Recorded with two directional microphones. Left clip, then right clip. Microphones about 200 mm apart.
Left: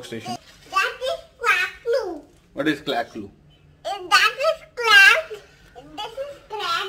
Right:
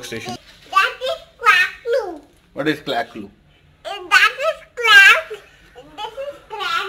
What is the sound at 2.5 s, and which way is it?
Speech, 15° right (ahead or behind).